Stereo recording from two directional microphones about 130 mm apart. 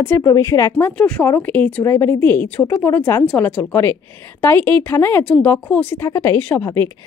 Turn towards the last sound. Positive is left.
turn(degrees=10)  # may be behind; listen again after turning